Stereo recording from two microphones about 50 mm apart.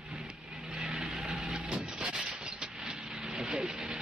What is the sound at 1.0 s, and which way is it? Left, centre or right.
Vehicle, centre.